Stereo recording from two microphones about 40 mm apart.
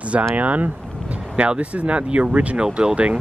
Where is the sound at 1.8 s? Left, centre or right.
Right.